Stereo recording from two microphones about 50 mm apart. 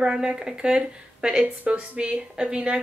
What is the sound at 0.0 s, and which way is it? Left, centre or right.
A woman's voice, centre.